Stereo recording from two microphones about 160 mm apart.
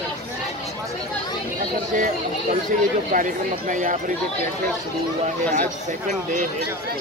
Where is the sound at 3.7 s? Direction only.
55° right (ahead or behind).